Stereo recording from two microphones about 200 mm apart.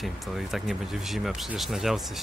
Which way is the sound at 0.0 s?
Centre (ahead or behind).